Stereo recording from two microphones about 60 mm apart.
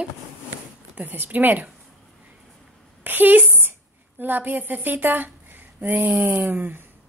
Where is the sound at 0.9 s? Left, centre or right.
Right.